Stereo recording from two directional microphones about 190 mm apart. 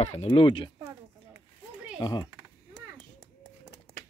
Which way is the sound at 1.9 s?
20° left (ahead or behind).